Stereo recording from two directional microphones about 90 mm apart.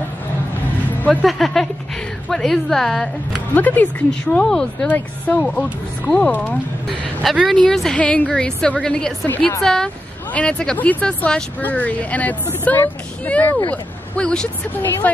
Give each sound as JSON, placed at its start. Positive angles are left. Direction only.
{"t": 1.2, "sound": "a woman's voice", "side_deg": 5}
{"t": 3.5, "sound": "speech", "side_deg": 20}
{"t": 4.8, "sound": "a woman's voice", "side_deg": 20}
{"t": 7.5, "sound": "a woman's voice", "side_deg": 5}